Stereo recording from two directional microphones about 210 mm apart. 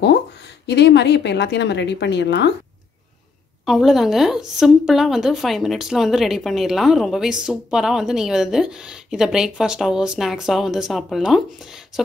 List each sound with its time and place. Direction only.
0.0 s speech: 55° left (ahead or behind)
3.6 s a woman's voice: centre (ahead or behind)